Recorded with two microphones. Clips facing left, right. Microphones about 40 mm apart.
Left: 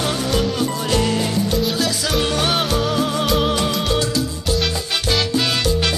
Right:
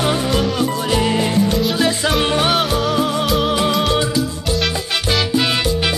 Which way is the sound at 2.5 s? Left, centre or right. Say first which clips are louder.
Right 2 dB; centre.